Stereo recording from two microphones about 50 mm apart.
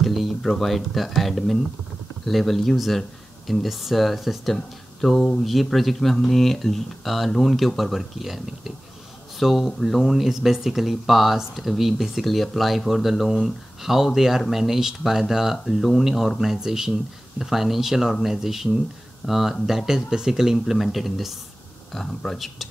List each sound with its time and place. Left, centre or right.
0.0 s speech: centre